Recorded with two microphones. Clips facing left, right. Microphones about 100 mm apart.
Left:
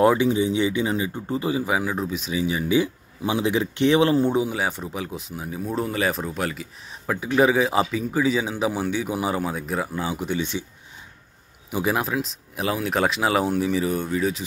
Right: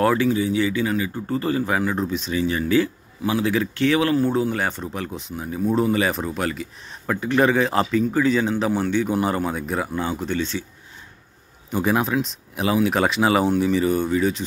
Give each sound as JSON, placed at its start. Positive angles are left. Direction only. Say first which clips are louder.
{"t": 0.0, "sound": "speech", "louder": "left 1 dB", "side_deg": 20}
{"t": 4.4, "sound": "speech", "louder": "right 1 dB", "side_deg": 5}
{"t": 11.7, "sound": "speech", "louder": "right 3 dB", "side_deg": 5}